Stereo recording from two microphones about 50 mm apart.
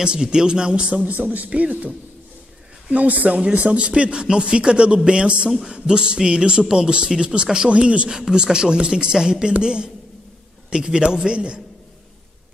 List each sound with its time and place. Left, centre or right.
0.0 s speech: centre
3.3 s speech: centre